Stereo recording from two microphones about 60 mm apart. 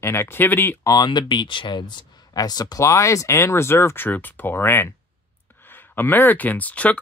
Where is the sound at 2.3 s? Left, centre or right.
Left.